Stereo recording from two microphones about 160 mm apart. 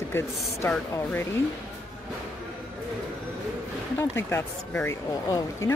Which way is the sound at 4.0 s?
15° left (ahead or behind).